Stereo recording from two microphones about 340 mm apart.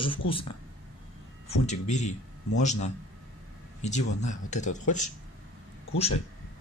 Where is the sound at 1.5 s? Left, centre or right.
Centre.